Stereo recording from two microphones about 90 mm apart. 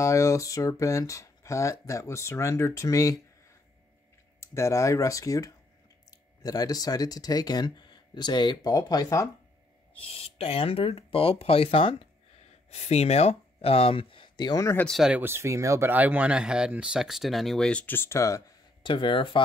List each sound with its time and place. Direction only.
0.0 s speech: 35° left (ahead or behind)
4.4 s speech: 35° left (ahead or behind)
10.0 s speech: 90° left
13.6 s speech: 90° left; by 14.7 s 50° left (ahead or behind)
14.9 s speech: 5° right (ahead or behind)
15.1 s speech: 25° right (ahead or behind)
15.9 s speech: 20° right (ahead or behind); by 17.8 s 10° left (ahead or behind)
17.8 s speech: 25° left (ahead or behind)
18.8 s speech: 65° left (ahead or behind)